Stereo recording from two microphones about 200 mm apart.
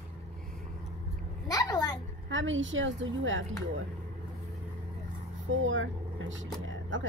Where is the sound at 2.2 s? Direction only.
75° right (ahead or behind).